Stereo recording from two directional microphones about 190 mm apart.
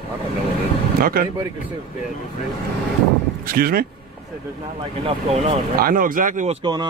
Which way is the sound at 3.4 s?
50° right (ahead or behind).